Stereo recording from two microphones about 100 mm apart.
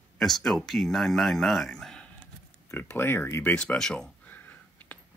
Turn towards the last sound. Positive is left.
turn(degrees=20)  # may be behind; listen again after turning